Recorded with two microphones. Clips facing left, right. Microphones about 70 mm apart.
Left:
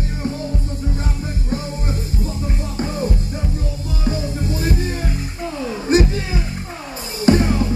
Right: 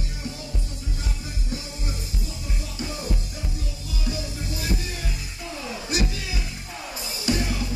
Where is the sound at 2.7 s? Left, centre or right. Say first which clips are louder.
Left 8 dB; left.